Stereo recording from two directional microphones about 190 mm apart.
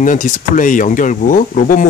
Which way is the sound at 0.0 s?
45° left (ahead or behind).